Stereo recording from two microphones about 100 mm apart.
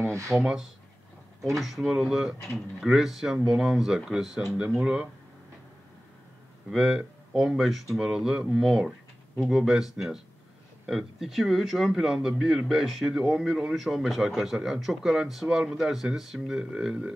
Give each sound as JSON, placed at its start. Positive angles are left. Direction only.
{"t": 0.0, "sound": "a sound", "side_deg": -30}
{"t": 0.3, "sound": "speech", "side_deg": 0}
{"t": 6.7, "sound": "speech", "side_deg": -5}